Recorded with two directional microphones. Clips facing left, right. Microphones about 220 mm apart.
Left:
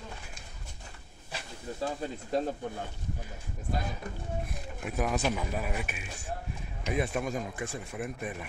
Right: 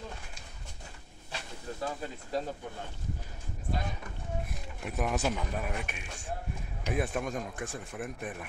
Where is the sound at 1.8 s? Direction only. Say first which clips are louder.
Left 3 dB; 30° left (ahead or behind).